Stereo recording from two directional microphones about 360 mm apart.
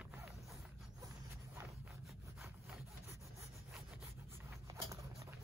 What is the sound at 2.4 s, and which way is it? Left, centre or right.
Sawing, centre.